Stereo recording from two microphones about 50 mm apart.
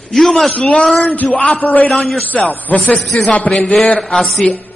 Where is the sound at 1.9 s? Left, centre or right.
Centre.